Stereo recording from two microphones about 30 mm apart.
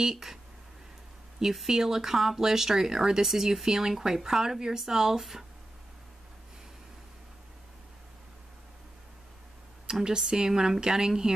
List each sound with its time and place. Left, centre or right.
0.0 s speech: centre
1.7 s a woman's voice: centre
10.0 s a woman's voice: right